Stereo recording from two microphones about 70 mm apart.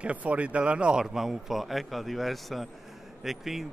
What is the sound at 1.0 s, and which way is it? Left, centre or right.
Speech, centre.